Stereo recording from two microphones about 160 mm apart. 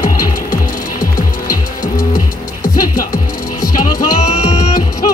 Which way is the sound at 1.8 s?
25° left (ahead or behind).